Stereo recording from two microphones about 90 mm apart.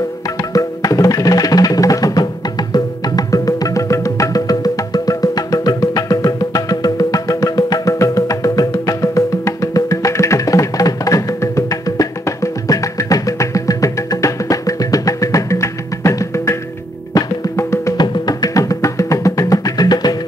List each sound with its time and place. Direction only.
0.5 s music: 40° left (ahead or behind)
17.9 s music: 50° left (ahead or behind)